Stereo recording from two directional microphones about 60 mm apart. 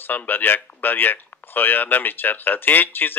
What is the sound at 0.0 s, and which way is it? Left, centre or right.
A man's voice, left.